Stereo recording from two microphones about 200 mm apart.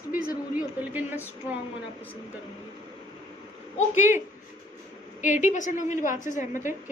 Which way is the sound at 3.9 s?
10° right (ahead or behind).